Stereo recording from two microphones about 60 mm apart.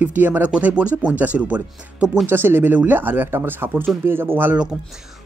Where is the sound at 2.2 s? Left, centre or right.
Right.